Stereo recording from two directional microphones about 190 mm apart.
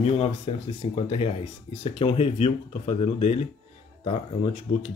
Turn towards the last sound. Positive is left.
turn(degrees=35)  # may be behind; listen again after turning